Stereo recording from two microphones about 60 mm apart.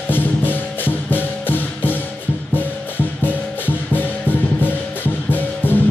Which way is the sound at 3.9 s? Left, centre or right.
Left.